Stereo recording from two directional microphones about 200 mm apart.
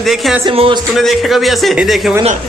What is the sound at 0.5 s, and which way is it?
Speech, 25° right (ahead or behind).